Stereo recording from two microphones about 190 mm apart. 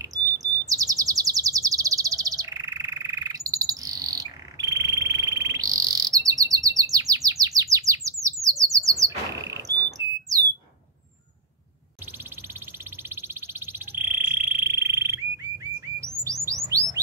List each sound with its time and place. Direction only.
0.0 s chirp: 20° right (ahead or behind)
13.1 s fire alarm: 10° right (ahead or behind)
16.6 s bird: 15° right (ahead or behind)